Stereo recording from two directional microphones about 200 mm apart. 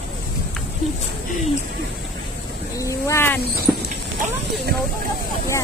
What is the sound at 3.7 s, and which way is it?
Clip-clop, 10° right (ahead or behind).